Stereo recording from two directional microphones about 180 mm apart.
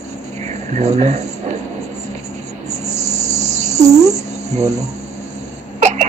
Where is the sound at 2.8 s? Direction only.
40° right (ahead or behind).